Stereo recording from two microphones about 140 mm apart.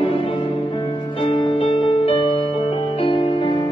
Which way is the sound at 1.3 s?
40° left (ahead or behind).